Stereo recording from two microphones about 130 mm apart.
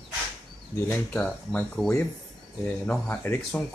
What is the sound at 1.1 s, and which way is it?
Speech, 10° left (ahead or behind).